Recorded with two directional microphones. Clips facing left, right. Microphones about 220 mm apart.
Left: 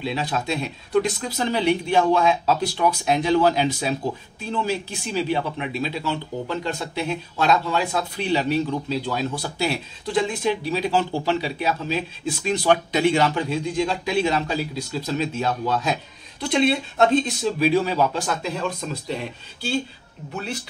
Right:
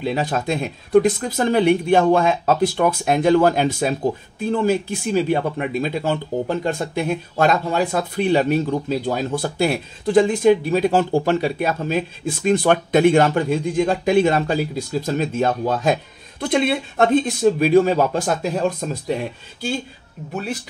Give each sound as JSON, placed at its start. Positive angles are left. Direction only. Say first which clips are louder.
{"t": 0.0, "sound": "speech", "louder": "right 4 dB", "side_deg": -50}